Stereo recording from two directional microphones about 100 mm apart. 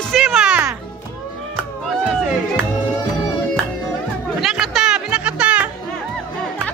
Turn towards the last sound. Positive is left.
turn(degrees=-10)  # may be behind; listen again after turning